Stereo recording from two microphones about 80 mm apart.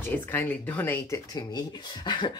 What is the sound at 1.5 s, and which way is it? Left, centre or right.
Speech, left.